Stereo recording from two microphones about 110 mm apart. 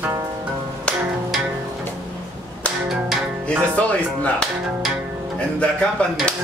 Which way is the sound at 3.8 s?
15° left (ahead or behind).